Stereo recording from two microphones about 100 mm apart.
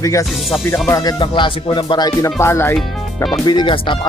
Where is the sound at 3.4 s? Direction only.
45° left (ahead or behind).